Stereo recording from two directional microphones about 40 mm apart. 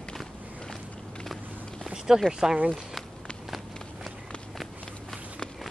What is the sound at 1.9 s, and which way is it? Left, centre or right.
Speech, centre.